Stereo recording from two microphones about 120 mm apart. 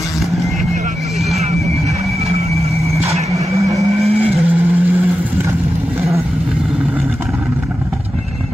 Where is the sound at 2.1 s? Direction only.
60° right (ahead or behind).